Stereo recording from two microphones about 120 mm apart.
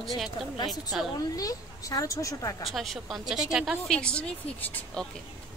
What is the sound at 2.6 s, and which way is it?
A woman's voice, centre (ahead or behind).